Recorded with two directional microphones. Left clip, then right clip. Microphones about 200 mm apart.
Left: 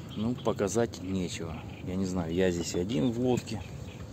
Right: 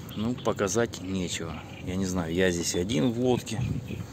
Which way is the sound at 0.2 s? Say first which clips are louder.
Right 2 dB; centre (ahead or behind).